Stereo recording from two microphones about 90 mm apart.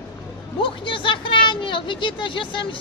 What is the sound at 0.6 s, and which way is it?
Speech, 70° left (ahead or behind).